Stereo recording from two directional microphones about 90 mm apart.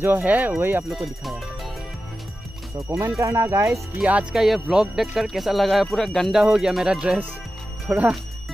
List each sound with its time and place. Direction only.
0.0 s speech: 20° right (ahead or behind)
0.8 s speech: centre (ahead or behind)
3.2 s speech: 35° right (ahead or behind)
4.0 s speech: 10° right (ahead or behind)
7.9 s speech: 25° right (ahead or behind)